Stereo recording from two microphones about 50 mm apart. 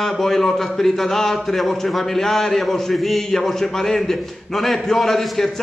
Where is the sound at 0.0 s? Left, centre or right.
Centre.